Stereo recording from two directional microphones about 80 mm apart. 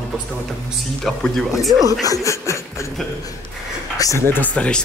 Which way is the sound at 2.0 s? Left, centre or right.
Left.